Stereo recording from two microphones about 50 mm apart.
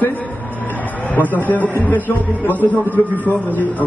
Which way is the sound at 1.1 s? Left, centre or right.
Left.